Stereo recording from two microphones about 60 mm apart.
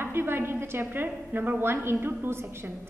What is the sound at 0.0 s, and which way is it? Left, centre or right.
A woman's voice, right.